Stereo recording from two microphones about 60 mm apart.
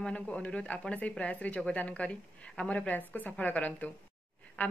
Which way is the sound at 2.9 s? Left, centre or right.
Left.